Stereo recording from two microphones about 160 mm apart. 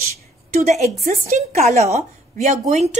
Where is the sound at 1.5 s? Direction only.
45° right (ahead or behind).